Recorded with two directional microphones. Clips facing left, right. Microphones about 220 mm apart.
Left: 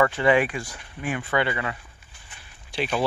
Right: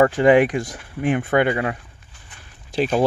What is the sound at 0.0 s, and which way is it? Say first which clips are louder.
Speech: right 6 dB; 45° right (ahead or behind).